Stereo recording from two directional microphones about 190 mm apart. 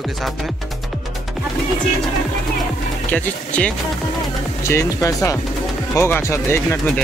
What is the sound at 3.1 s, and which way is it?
Speech, 5° left (ahead or behind).